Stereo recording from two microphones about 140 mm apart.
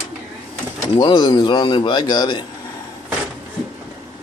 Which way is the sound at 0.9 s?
30° left (ahead or behind).